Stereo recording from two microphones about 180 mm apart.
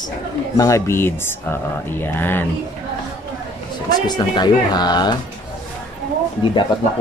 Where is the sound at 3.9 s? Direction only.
25° left (ahead or behind).